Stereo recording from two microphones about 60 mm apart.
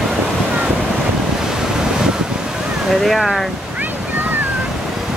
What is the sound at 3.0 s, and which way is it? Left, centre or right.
Speech, centre.